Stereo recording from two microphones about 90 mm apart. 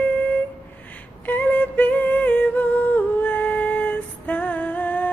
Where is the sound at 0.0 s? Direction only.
15° left (ahead or behind).